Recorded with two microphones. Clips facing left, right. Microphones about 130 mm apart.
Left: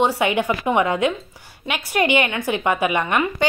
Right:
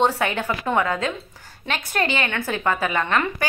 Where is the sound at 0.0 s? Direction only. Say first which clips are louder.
Left 2 dB; 15° left (ahead or behind).